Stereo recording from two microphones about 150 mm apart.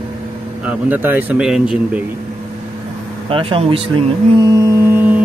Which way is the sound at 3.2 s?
35° right (ahead or behind).